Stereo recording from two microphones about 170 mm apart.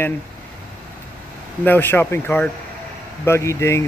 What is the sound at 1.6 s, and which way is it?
Speech, 10° left (ahead or behind).